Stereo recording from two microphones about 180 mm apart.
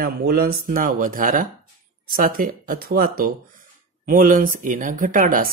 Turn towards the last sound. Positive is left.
turn(degrees=-50)  # may be behind; listen again after turning